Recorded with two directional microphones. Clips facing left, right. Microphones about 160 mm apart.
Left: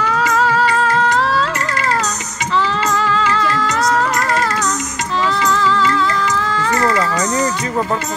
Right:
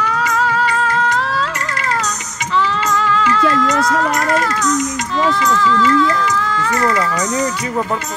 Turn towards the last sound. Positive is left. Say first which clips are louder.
# left 1 dB
turn(degrees=30)  # may be behind; listen again after turning